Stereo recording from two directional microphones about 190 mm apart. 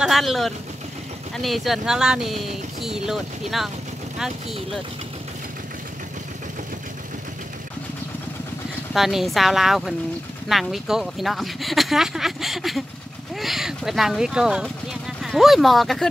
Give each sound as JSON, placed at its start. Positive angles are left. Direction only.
{"t": 0.0, "sound": "speech", "side_deg": 0}
{"t": 8.9, "sound": "speech", "side_deg": 0}